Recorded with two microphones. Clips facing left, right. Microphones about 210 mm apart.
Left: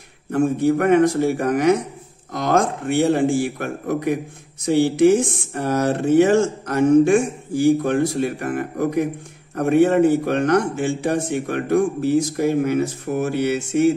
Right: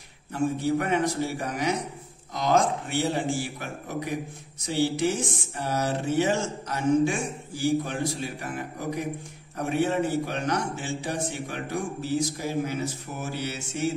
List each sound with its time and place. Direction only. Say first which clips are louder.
0.3 s speech: left 8 dB; 55° left (ahead or behind)